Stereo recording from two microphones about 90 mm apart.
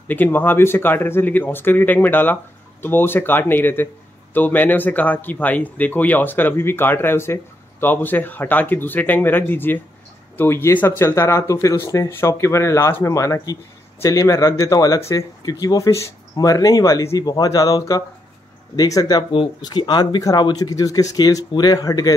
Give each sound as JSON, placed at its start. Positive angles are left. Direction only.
{"t": 0.1, "sound": "a man's voice", "side_deg": 20}
{"t": 19.6, "sound": "speech", "side_deg": 55}